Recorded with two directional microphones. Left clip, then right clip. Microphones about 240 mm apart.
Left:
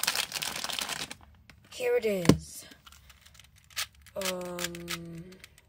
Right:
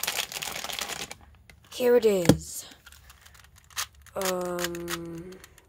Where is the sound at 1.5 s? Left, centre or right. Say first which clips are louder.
Right 7 dB; centre.